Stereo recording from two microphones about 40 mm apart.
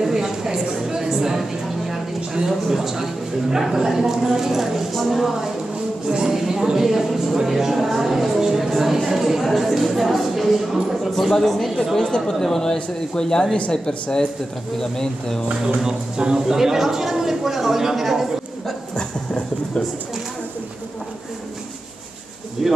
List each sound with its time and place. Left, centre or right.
0.0 s a sound: centre
2.7 s a woman's voice: centre
12.3 s a man's voice: centre
13.6 s a man's voice: left
15.8 s a woman's voice: centre
18.9 s a sound: left
22.6 s a woman's voice: centre